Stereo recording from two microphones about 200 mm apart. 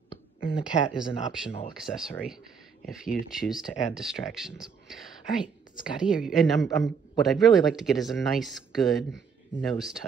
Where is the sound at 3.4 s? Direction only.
Centre (ahead or behind).